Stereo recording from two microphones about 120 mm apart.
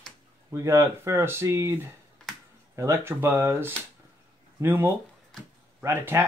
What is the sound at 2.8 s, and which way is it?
Speech, 20° right (ahead or behind).